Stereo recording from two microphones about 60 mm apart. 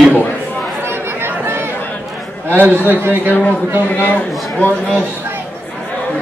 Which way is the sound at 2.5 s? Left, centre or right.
Right.